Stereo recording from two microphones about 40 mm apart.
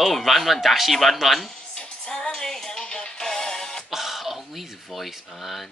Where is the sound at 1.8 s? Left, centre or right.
Left.